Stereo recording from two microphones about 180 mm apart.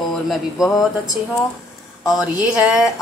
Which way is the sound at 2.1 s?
20° left (ahead or behind).